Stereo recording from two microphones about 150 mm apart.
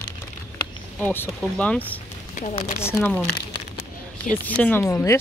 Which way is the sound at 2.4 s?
50° left (ahead or behind).